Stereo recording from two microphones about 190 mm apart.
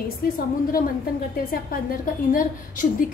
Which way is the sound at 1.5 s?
50° left (ahead or behind).